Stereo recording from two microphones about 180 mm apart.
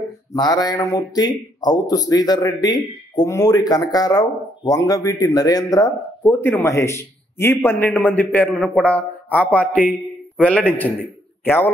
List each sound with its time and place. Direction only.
0.3 s a man's voice: 20° left (ahead or behind)
6.2 s a man's voice: 10° left (ahead or behind)